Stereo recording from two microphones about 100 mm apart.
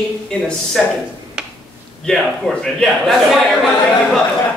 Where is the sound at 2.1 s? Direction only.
10° left (ahead or behind).